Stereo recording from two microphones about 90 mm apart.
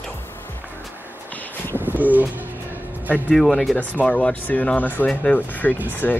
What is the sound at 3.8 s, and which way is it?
Speech, 15° left (ahead or behind).